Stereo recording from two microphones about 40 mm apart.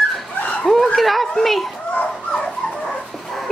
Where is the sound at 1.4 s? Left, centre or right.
Centre.